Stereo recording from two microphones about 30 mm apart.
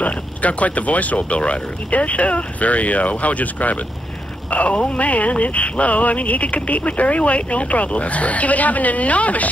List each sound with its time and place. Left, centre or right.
0.0 s speech: left